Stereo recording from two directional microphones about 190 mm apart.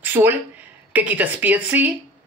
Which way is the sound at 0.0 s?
10° right (ahead or behind).